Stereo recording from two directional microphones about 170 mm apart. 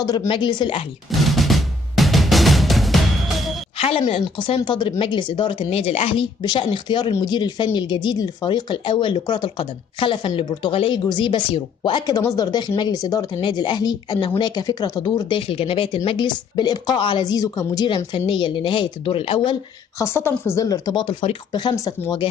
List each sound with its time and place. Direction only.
0.0 s a woman's voice: 25° left (ahead or behind)
1.1 s music: centre (ahead or behind)
3.7 s a woman's voice: 35° left (ahead or behind)
20.0 s a woman's voice: 15° left (ahead or behind)